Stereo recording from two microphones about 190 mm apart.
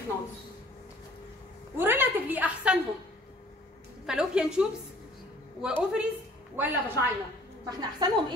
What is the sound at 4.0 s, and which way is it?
A woman's voice, 5° right (ahead or behind).